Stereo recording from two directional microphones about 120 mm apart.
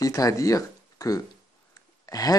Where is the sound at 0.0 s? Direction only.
30° left (ahead or behind).